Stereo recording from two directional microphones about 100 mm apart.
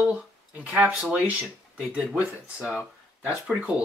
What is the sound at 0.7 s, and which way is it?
Speech, 10° right (ahead or behind).